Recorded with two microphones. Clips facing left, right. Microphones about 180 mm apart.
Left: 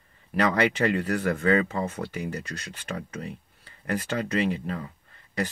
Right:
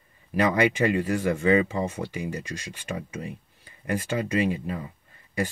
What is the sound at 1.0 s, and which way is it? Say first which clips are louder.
Speech: right 1 dB; 15° right (ahead or behind).